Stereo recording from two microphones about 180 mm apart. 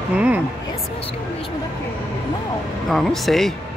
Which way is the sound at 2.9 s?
Centre (ahead or behind).